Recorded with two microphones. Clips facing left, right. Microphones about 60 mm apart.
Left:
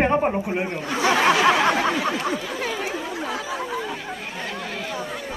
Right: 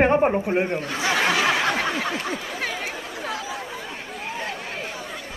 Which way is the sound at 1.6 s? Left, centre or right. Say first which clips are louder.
Left 3 dB; left.